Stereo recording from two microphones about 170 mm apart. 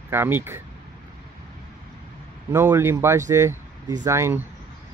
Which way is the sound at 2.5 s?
15° right (ahead or behind).